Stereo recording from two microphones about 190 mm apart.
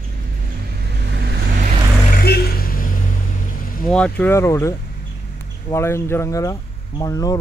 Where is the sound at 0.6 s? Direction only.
60° right (ahead or behind).